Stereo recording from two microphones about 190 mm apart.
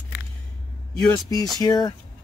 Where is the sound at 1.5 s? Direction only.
20° left (ahead or behind).